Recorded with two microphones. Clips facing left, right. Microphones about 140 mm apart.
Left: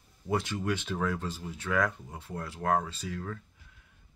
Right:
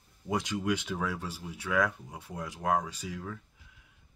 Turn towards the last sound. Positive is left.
turn(degrees=-10)  # may be behind; listen again after turning